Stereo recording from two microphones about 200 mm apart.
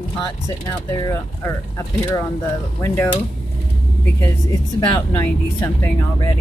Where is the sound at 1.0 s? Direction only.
15° left (ahead or behind).